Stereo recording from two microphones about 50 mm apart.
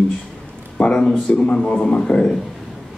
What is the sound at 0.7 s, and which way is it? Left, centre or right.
A man's voice, centre.